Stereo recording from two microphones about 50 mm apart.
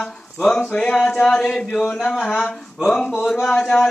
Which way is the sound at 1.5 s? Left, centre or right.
Centre.